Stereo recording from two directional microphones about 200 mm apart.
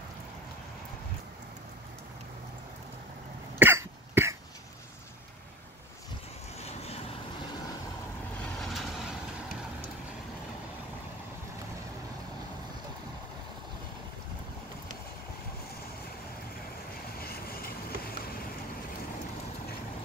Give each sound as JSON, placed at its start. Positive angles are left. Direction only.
{"t": 3.5, "sound": "cough", "side_deg": -10}
{"t": 6.6, "sound": "vehicle", "side_deg": 30}
{"t": 8.5, "sound": "vehicle", "side_deg": 0}
{"t": 17.2, "sound": "vehicle", "side_deg": 50}